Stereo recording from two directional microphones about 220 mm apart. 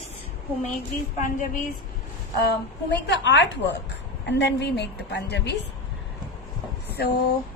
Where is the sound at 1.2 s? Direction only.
35° left (ahead or behind).